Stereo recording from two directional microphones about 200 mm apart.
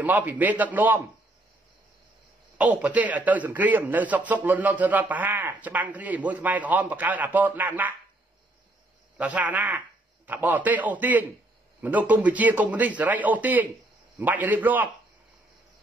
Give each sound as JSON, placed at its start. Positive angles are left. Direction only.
{"t": 0.0, "sound": "a man's voice", "side_deg": -10}
{"t": 2.5, "sound": "a man's voice", "side_deg": -5}
{"t": 9.2, "sound": "a man's voice", "side_deg": -5}